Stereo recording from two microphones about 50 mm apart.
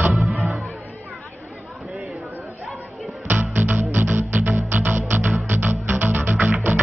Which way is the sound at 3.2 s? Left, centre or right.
Right.